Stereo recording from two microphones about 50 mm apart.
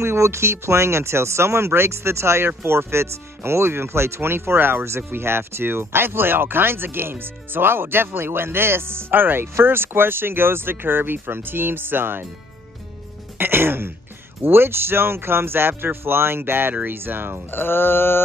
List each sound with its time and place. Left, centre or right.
0.0 s speech: right
4.8 s speech: right
13.4 s throat clearing: right
14.4 s speech: right
17.5 s mantra: left